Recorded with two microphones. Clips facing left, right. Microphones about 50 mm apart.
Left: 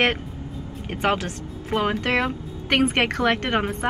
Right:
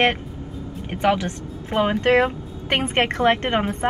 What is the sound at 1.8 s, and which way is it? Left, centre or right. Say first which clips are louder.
Speech: right 5 dB; right.